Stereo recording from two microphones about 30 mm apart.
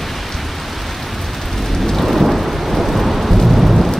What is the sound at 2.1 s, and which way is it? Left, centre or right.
Thunder, centre.